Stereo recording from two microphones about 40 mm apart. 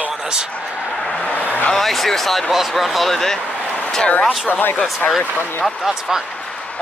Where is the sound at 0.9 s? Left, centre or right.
Left.